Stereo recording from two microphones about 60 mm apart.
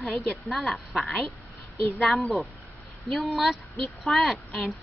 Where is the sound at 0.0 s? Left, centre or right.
Centre.